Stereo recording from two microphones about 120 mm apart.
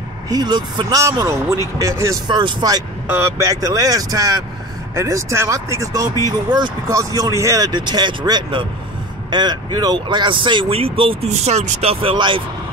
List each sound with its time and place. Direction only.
0.3 s speech: 35° right (ahead or behind)
3.1 s speech: 20° right (ahead or behind); by 11.1 s 50° right (ahead or behind)
11.2 s speech: 65° right (ahead or behind); by 12.4 s 45° right (ahead or behind)